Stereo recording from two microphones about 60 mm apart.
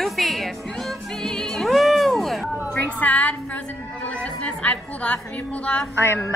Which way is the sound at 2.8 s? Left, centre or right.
Left.